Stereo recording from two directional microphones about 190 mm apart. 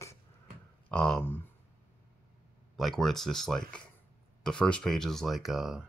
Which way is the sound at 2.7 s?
Centre (ahead or behind).